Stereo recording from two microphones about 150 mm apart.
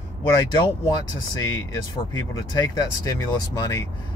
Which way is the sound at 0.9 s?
25° left (ahead or behind).